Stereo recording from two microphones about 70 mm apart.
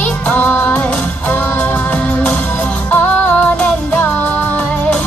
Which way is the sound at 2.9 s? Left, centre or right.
Left.